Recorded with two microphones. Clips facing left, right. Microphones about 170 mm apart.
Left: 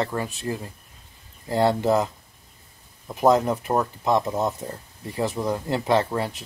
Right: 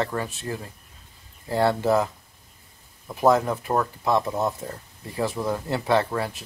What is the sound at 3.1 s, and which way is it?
Speech, 20° left (ahead or behind).